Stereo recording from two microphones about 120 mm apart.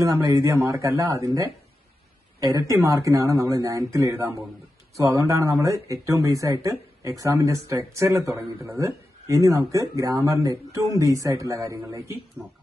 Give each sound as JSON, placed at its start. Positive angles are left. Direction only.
{"t": 0.1, "sound": "speech", "side_deg": -25}
{"t": 2.5, "sound": "speech", "side_deg": -30}